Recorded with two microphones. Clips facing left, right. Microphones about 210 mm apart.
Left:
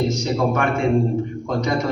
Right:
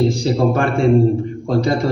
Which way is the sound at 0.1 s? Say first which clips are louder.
Right 4 dB; 30° right (ahead or behind).